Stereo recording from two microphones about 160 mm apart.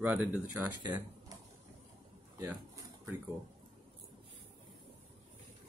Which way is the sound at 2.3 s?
20° right (ahead or behind).